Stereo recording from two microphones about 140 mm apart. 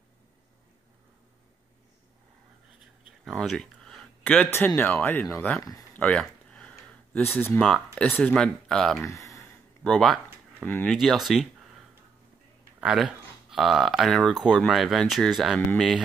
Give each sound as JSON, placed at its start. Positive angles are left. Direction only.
{"t": 3.1, "sound": "speech", "side_deg": 0}
{"t": 5.6, "sound": "speech", "side_deg": 25}
{"t": 5.9, "sound": "speech", "side_deg": 10}
{"t": 6.2, "sound": "a sound", "side_deg": 5}
{"t": 7.6, "sound": "speech", "side_deg": 5}
{"t": 9.0, "sound": "speech", "side_deg": 20}
{"t": 9.8, "sound": "speech", "side_deg": 5}
{"t": 10.9, "sound": "speech", "side_deg": 0}
{"t": 12.8, "sound": "speech", "side_deg": -5}